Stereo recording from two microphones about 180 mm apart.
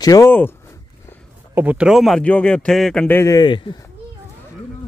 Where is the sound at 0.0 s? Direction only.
20° left (ahead or behind).